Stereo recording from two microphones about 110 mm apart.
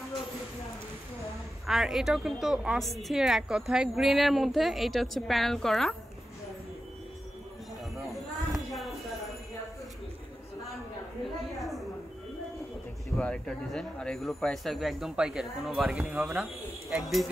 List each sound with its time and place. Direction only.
1.7 s a woman's voice: 5° right (ahead or behind)
8.5 s a sound: centre (ahead or behind)
13.2 s a woman's voice: 5° left (ahead or behind); by 16.4 s 15° right (ahead or behind)
16.9 s a woman's voice: centre (ahead or behind)